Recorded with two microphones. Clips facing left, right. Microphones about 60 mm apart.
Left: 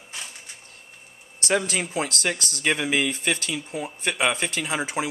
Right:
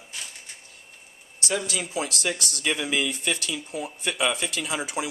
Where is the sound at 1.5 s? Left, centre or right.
Left.